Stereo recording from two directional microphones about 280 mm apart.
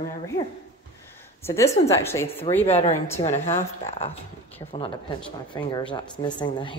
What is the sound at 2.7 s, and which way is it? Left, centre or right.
Speech, left.